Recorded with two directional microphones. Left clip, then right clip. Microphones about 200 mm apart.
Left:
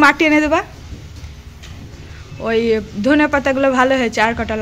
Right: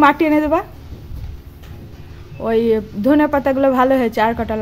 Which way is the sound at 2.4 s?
20° right (ahead or behind).